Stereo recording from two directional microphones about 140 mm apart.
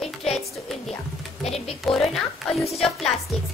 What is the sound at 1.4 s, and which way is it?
Speech, 45° left (ahead or behind).